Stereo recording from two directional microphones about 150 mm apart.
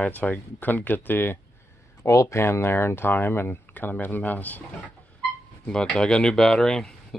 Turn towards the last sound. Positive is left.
turn(degrees=5)  # may be behind; listen again after turning